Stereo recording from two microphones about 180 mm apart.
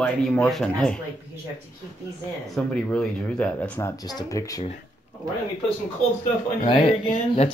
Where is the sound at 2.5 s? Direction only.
5° left (ahead or behind).